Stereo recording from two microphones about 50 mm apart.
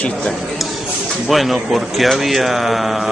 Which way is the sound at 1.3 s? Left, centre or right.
Centre.